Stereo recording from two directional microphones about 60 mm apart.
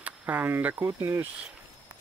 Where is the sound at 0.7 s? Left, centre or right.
Right.